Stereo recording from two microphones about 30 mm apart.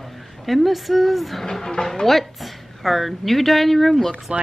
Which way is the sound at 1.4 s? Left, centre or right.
Centre.